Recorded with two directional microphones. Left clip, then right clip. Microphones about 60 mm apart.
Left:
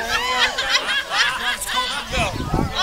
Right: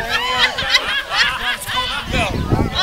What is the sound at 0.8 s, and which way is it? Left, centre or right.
Snicker, left.